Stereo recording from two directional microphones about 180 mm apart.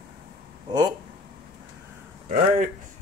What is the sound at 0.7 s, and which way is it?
Speech, 20° right (ahead or behind).